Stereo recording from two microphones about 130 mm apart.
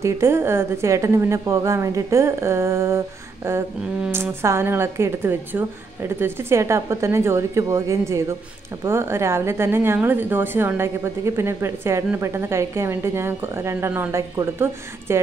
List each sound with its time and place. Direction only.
0.0 s a woman's voice: 20° right (ahead or behind)
4.1 s a woman's voice: 20° right (ahead or behind)